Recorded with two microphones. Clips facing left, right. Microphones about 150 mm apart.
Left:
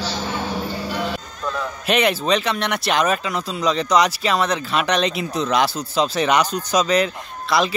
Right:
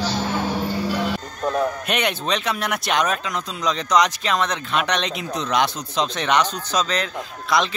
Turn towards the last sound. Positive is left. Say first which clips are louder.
# left 1 dB
turn(degrees=5)  # may be behind; listen again after turning